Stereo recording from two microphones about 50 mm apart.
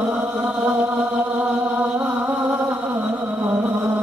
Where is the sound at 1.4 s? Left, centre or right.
Right.